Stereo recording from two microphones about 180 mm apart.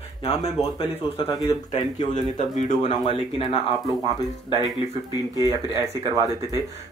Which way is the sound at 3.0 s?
30° left (ahead or behind).